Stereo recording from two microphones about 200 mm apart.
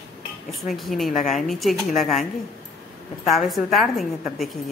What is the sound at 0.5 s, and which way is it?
A woman's voice, centre (ahead or behind).